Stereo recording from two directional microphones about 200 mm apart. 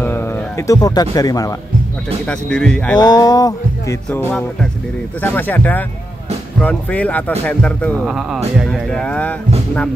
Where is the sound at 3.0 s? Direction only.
20° left (ahead or behind).